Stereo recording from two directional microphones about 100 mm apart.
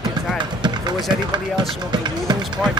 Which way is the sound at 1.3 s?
50° right (ahead or behind).